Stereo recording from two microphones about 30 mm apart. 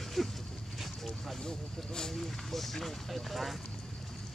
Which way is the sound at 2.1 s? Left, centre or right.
Centre.